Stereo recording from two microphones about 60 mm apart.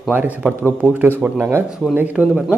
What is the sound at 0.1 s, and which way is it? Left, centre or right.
A man's voice, right.